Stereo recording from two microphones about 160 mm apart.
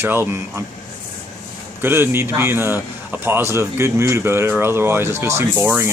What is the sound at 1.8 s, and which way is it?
A man's voice, 15° right (ahead or behind).